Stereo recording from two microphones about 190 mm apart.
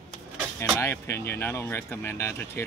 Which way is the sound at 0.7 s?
15° left (ahead or behind).